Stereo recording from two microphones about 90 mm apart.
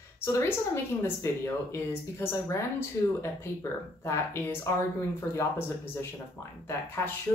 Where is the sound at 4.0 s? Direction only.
30° left (ahead or behind).